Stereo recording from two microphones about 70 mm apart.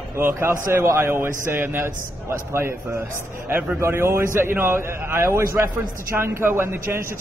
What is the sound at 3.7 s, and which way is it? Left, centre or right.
A man's voice, right.